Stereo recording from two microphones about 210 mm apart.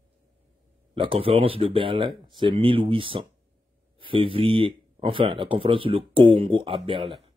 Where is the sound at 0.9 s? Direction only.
25° right (ahead or behind).